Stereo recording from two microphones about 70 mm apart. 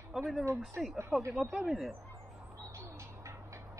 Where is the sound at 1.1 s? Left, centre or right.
Right.